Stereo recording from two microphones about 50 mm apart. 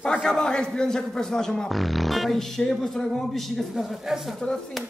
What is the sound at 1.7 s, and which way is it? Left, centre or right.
Speech, centre.